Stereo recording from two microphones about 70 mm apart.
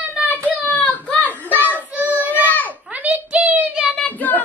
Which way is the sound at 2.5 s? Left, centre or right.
Left.